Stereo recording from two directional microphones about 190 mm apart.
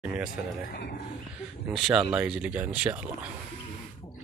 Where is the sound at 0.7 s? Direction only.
60° left (ahead or behind).